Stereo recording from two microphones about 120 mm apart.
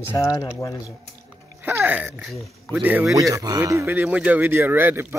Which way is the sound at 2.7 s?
15° right (ahead or behind).